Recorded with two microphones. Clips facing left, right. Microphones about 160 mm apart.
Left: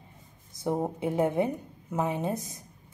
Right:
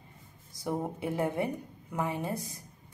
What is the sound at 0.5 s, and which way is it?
A woman's voice, 25° left (ahead or behind).